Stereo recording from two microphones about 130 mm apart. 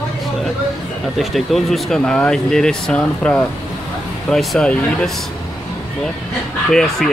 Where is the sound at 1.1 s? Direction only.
Centre (ahead or behind).